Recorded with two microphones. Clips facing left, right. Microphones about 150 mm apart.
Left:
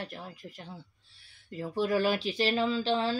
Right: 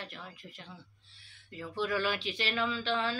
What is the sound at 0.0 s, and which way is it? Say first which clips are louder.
Speech: left 5 dB; 40° left (ahead or behind).